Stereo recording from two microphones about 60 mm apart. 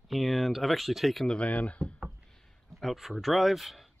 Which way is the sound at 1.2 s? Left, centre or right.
Left.